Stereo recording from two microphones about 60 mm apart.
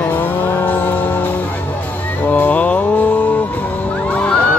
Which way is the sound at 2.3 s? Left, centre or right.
Left.